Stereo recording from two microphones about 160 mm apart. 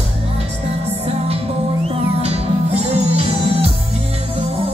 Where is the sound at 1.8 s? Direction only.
40° right (ahead or behind).